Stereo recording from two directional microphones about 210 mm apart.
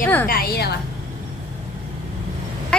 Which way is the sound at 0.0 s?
10° left (ahead or behind).